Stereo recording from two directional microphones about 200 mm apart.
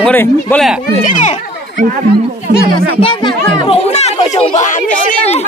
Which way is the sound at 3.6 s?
30° left (ahead or behind).